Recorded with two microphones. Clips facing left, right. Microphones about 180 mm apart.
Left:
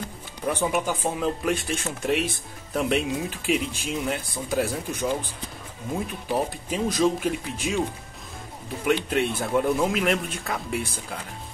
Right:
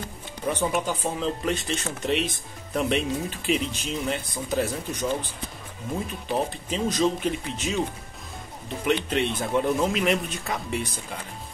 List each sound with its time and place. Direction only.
0.5 s speech: 10° left (ahead or behind)
6.3 s speech: 10° left (ahead or behind)
8.8 s speech: 5° left (ahead or behind)